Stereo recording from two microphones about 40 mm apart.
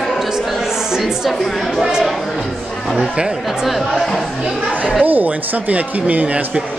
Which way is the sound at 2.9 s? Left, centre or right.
Right.